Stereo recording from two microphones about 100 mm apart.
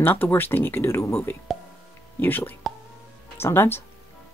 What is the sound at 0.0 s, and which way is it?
Speech, 20° left (ahead or behind).